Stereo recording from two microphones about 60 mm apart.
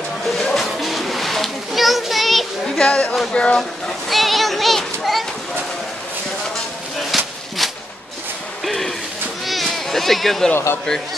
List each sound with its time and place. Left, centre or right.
0.3 s children playing: centre
3.3 s speech: centre
4.1 s child singing: centre
7.1 s a sound: centre